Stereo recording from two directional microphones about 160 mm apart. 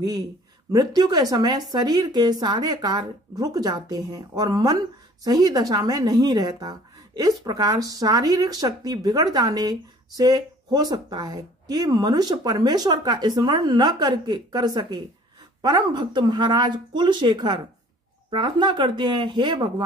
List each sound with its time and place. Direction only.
0.7 s a woman's voice: 25° right (ahead or behind)